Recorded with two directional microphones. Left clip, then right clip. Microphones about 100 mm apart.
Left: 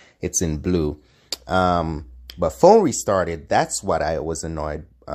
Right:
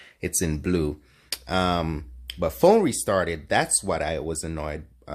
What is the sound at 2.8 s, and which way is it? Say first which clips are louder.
Speech: left 3 dB; 40° left (ahead or behind).